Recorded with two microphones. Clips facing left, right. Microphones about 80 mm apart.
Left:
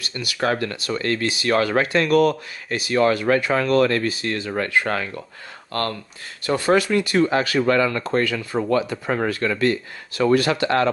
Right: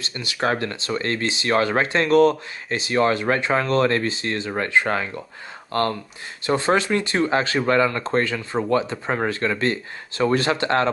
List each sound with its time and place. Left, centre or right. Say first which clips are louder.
0.0 s speech: left 1 dB; right